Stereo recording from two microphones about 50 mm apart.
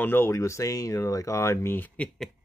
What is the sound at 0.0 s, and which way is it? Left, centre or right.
Speech, left.